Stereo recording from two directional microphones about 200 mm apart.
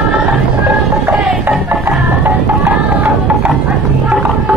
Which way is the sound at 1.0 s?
5° right (ahead or behind).